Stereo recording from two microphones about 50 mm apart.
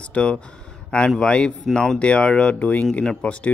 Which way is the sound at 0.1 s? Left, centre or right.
Left.